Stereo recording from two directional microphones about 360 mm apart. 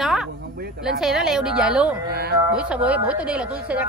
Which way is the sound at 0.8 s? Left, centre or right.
Centre.